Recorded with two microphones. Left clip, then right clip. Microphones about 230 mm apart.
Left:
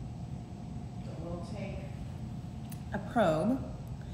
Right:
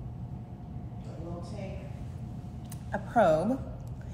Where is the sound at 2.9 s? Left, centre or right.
Centre.